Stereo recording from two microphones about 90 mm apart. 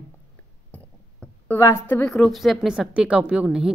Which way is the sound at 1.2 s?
25° left (ahead or behind).